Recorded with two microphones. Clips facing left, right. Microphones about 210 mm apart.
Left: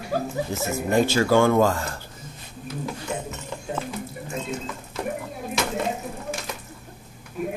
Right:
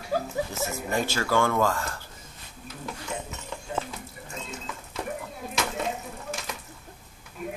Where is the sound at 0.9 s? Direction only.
20° left (ahead or behind).